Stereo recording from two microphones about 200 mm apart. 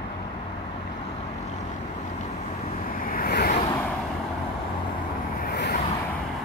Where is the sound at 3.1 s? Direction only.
50° left (ahead or behind).